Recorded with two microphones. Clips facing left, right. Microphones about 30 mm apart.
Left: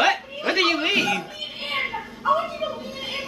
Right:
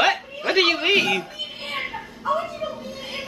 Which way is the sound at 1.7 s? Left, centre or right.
Centre.